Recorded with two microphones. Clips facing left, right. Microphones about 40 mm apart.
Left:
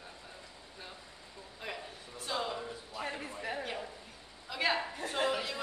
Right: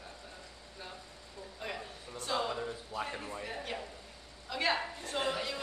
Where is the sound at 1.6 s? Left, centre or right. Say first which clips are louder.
Right 1 dB; centre.